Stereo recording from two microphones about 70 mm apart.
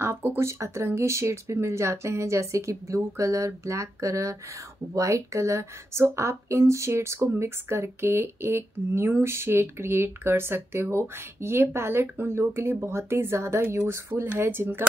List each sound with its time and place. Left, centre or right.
0.0 s speech: right